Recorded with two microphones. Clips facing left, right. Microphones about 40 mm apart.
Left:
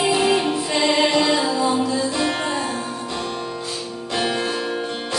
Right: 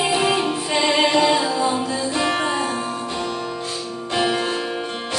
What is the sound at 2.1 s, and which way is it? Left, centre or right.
Music, right.